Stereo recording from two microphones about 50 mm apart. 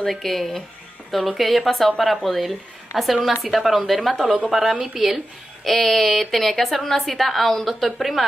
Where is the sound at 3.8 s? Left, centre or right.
Centre.